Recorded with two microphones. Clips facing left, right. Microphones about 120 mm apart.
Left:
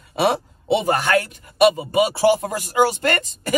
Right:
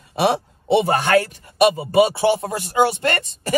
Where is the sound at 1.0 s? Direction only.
30° right (ahead or behind).